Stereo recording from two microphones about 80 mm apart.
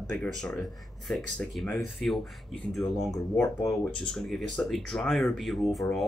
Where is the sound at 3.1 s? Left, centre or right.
Left.